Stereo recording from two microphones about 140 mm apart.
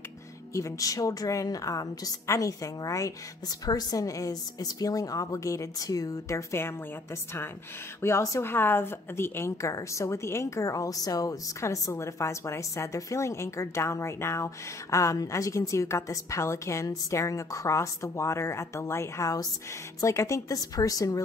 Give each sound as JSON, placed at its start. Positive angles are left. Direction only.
{"t": 0.5, "sound": "a woman's voice", "side_deg": 20}
{"t": 8.0, "sound": "a woman's voice", "side_deg": 20}